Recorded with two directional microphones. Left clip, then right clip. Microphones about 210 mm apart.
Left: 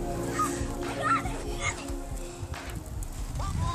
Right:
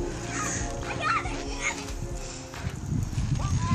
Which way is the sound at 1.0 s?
20° left (ahead or behind).